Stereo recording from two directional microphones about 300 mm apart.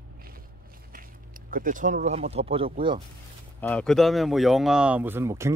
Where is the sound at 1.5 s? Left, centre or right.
Right.